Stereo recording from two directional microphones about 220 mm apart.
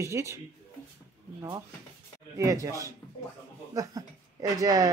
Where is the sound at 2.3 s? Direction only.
15° right (ahead or behind).